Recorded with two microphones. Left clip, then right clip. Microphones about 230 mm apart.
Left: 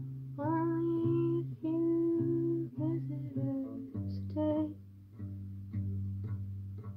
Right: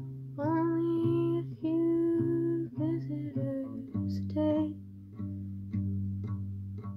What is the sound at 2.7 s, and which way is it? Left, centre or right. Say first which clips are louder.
Music: right 4 dB; right.